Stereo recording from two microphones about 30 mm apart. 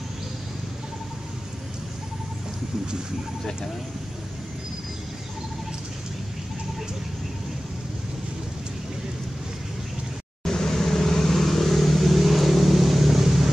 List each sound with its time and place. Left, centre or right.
10.4 s vehicle: centre